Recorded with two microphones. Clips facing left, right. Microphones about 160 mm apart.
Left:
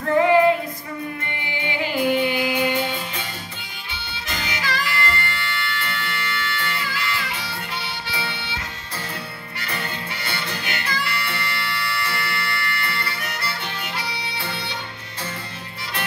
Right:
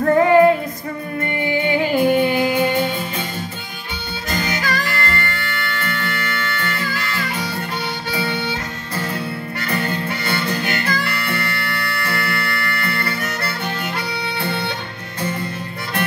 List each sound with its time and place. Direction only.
0.0 s female singing: 50° right (ahead or behind)
1.2 s music: 50° right (ahead or behind)
4.3 s music: 45° right (ahead or behind)
9.6 s harmonica: 45° right (ahead or behind)